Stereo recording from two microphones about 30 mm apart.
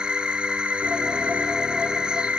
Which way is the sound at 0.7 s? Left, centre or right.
Right.